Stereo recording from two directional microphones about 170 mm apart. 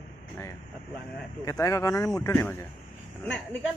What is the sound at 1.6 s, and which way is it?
Speech, 20° left (ahead or behind).